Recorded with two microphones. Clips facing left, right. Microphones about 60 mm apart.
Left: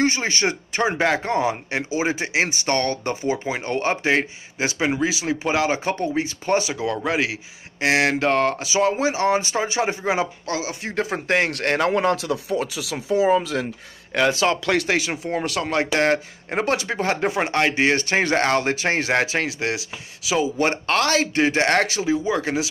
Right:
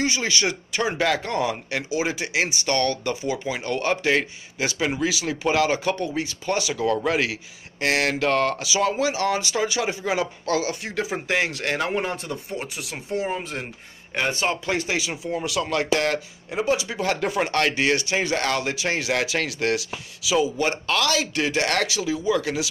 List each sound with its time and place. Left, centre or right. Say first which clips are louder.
0.0 s a man's voice: left 3 dB; left
10.8 s speech: left 2 dB; left
11.9 s speech: left 6 dB; left
15.0 s speech: left 3 dB; left
16.4 s speech: left 2 dB; left
17.0 s a man's voice: left 2 dB; left
17.9 s speech: left 4 dB; left
20.2 s speech: left 1 dB; left